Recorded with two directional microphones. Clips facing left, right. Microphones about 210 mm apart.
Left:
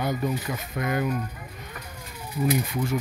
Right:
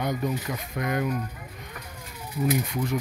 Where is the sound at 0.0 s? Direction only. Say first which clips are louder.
Left 1 dB; 5° left (ahead or behind).